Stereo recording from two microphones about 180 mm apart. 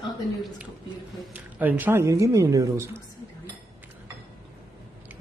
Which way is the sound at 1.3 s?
10° right (ahead or behind).